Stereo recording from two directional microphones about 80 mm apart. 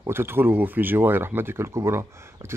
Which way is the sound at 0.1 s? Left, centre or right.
Right.